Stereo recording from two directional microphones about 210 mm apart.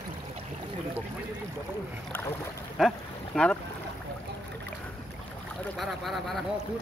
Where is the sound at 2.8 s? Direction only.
Centre (ahead or behind).